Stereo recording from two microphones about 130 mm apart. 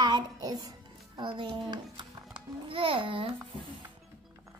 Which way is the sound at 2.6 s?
45° right (ahead or behind).